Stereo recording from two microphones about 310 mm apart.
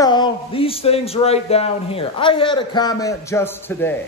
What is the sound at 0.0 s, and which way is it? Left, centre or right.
A man's voice, centre.